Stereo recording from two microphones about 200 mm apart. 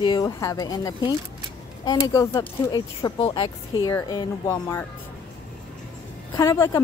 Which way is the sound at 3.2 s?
25° left (ahead or behind).